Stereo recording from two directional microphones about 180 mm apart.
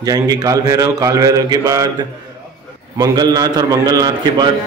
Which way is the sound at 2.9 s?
20° right (ahead or behind).